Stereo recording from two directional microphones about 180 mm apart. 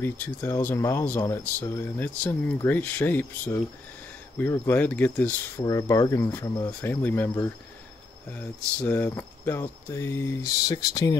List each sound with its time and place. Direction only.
0.0 s speech: 10° left (ahead or behind)
5.6 s speech: 20° left (ahead or behind)